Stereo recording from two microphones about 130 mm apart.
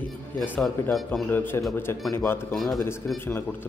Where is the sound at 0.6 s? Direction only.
Centre (ahead or behind).